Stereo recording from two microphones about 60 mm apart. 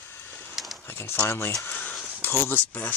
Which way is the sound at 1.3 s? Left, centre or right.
Left.